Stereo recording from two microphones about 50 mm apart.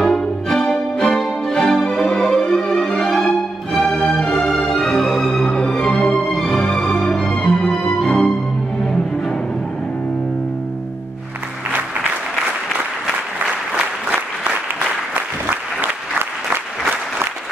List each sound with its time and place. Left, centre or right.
0.0 s music: centre
14.1 s applause: right